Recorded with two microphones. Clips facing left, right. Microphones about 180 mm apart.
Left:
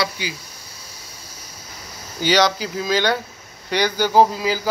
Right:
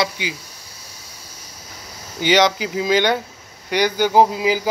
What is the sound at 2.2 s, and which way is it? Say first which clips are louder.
Speech: right 2 dB; 20° right (ahead or behind).